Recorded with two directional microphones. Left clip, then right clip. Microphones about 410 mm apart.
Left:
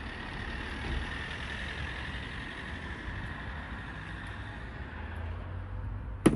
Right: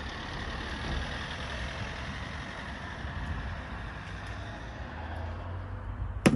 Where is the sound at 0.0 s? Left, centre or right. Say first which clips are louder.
Right 2 dB; centre.